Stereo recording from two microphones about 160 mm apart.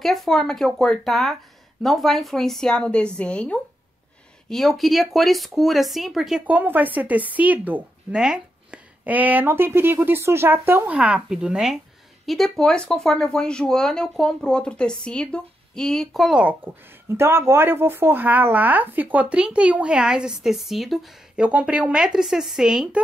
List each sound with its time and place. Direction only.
0.0 s speech: centre (ahead or behind)